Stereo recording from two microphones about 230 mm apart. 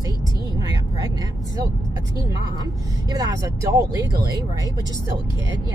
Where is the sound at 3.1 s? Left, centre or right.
Centre.